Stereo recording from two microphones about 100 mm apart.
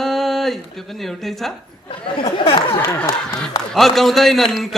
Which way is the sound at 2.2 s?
65° left (ahead or behind).